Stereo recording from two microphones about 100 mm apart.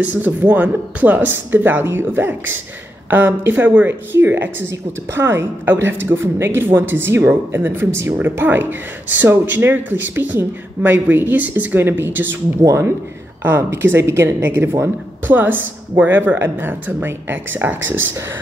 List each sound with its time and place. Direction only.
0.0 s a woman's voice: 15° right (ahead or behind)